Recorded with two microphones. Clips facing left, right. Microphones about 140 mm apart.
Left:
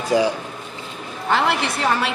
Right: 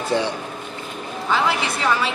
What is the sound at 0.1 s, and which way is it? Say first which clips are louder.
Speech: left 5 dB; 10° left (ahead or behind).